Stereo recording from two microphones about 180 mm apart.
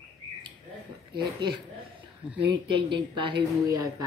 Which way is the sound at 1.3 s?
25° right (ahead or behind).